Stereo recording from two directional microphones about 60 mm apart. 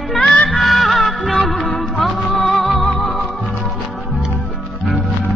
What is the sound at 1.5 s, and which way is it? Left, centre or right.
Music, left.